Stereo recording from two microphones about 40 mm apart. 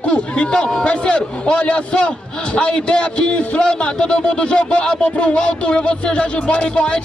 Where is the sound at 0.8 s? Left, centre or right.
Left.